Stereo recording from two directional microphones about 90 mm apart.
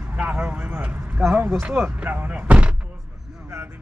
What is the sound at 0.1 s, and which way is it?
Speech, 15° right (ahead or behind).